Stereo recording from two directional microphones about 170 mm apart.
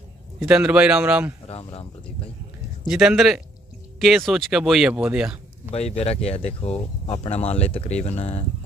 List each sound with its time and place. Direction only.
0.4 s speech: 5° right (ahead or behind)
1.5 s speech: 35° left (ahead or behind)
2.9 s speech: centre (ahead or behind)
5.7 s speech: 40° left (ahead or behind)